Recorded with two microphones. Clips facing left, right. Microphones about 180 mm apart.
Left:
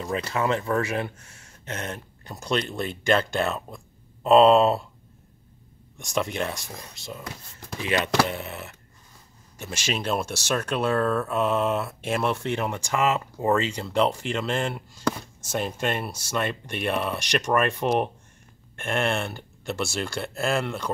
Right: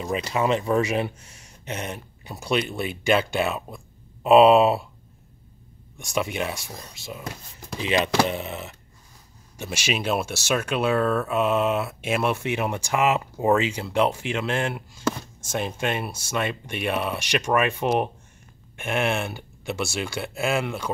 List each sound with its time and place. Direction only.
0.0 s speech: 15° right (ahead or behind)
5.9 s speech: 5° right (ahead or behind)
7.7 s speech: 15° right (ahead or behind)